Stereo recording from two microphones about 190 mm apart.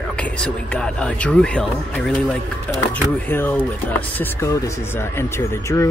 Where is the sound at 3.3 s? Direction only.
10° left (ahead or behind).